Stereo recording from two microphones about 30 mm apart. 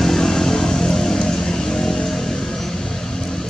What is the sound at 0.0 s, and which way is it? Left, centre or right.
Vehicle, centre.